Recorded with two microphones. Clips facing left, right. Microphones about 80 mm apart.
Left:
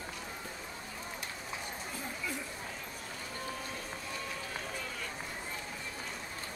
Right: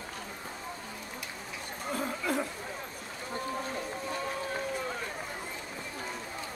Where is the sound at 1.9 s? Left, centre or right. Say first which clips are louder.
Right 10 dB; right.